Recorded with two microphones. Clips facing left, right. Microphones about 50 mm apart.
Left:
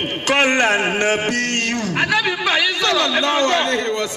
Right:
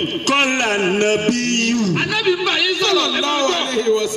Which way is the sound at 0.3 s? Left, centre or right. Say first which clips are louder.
Left 2 dB; left.